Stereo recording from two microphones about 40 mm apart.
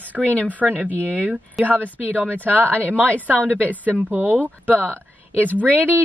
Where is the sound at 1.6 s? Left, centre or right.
Centre.